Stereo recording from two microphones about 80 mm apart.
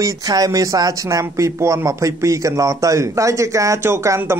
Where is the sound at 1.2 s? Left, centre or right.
Right.